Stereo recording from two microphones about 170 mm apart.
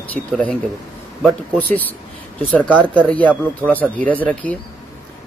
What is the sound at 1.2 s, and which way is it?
Speech, 10° left (ahead or behind).